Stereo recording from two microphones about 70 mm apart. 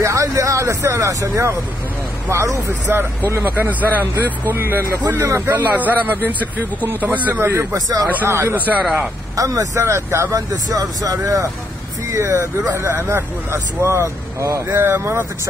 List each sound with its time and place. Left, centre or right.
0.0 s speech: right
3.4 s speech: right
5.5 s speech: right
7.7 s speech: right
8.3 s speech: right
9.4 s speech: right
9.8 s speech: right
10.3 s speech: right